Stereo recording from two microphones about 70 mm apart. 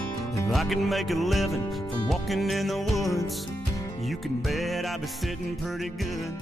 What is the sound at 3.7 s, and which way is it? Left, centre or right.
Music, left.